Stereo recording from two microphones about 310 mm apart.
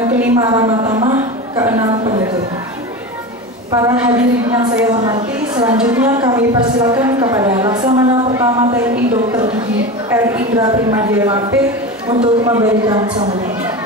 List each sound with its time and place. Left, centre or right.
0.2 s a woman's voice: centre
1.1 s a sound: centre
3.7 s a woman's voice: centre
10.1 s a woman's voice: centre